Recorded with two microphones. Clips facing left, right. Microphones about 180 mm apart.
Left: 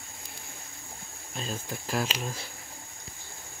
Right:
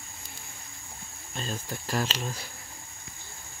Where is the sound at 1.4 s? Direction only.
Centre (ahead or behind).